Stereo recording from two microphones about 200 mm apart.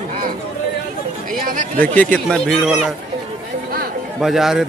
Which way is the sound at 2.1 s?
5° left (ahead or behind).